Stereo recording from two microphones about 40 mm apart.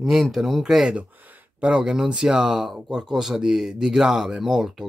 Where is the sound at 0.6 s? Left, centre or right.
Centre.